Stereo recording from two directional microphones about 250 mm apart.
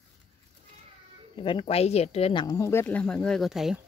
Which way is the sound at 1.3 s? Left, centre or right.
Centre.